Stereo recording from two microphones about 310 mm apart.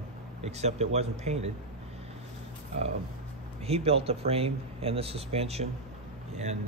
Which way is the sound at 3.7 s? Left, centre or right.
Centre.